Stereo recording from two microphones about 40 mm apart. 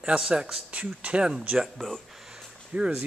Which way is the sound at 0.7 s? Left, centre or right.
Right.